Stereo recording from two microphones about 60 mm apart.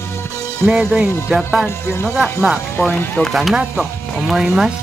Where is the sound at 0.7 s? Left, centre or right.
Centre.